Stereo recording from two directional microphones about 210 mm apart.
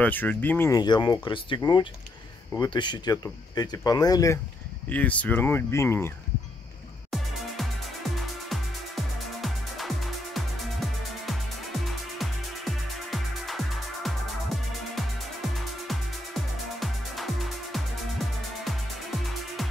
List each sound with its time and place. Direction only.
0.0 s speech: 10° left (ahead or behind)
8.5 s music: centre (ahead or behind)